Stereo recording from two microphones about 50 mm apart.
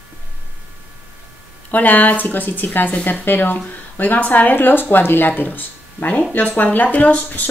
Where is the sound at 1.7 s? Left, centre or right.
Left.